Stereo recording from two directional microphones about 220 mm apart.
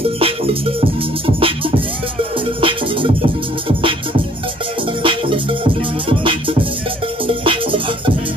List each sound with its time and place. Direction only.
0.0 s music: 25° right (ahead or behind)
2.6 s music: 25° right (ahead or behind)
5.0 s music: 25° right (ahead or behind)